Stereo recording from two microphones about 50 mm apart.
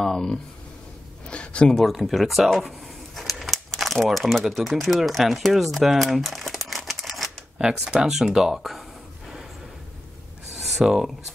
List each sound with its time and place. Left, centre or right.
0.0 s speech: centre
1.3 s a sound: left
1.7 s speech: centre
3.2 s crumpling: centre
7.6 s speech: centre
10.5 s a sound: centre